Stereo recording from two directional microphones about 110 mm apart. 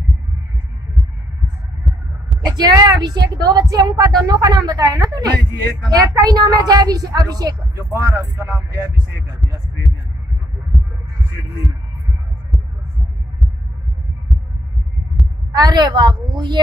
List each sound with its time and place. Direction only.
2.5 s speech: 35° right (ahead or behind)
10.7 s heart sounds: 10° right (ahead or behind)
15.5 s speech: 35° right (ahead or behind)